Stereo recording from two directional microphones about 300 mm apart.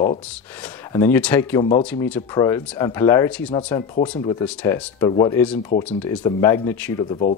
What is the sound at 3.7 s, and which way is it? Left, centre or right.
Speech, centre.